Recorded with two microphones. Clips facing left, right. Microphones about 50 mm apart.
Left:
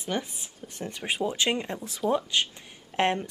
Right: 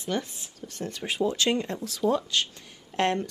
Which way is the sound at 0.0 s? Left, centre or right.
Centre.